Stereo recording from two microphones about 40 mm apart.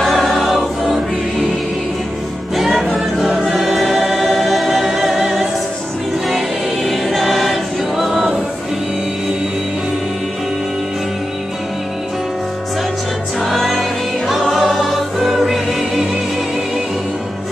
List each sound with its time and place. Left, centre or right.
0.0 s choir: centre
2.5 s music: centre
3.4 s choir: centre
13.7 s music: centre
14.5 s choir: centre